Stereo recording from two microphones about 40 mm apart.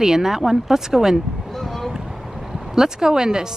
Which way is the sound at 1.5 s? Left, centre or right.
Centre.